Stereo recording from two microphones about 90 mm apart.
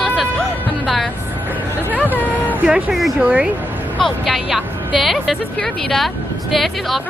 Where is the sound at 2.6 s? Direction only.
5° right (ahead or behind).